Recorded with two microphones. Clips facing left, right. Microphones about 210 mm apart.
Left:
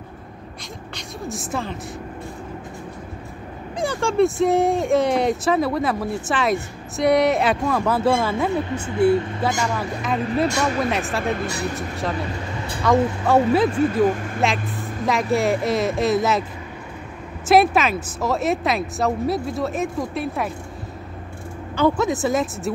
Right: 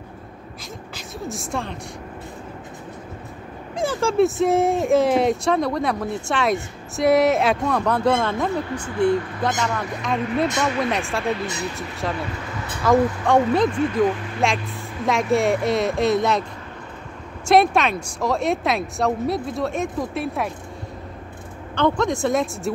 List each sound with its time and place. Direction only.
0.9 s speech: centre (ahead or behind)
3.7 s speech: centre (ahead or behind)
8.7 s speech: 25° left (ahead or behind)
9.4 s speech: 5° left (ahead or behind)
12.8 s speech: centre (ahead or behind)
17.5 s speech: 5° left (ahead or behind)
21.7 s speech: 5° left (ahead or behind)